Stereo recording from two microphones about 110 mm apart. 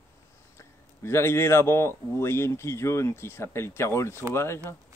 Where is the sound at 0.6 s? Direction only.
25° left (ahead or behind).